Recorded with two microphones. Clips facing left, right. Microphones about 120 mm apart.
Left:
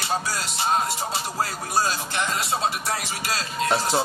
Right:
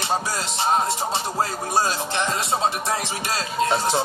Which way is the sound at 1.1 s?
25° right (ahead or behind).